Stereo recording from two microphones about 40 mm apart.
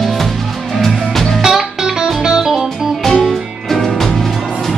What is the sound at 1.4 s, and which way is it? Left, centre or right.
Music, centre.